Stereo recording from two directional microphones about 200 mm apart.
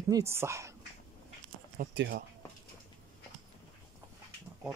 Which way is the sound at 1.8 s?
45° right (ahead or behind).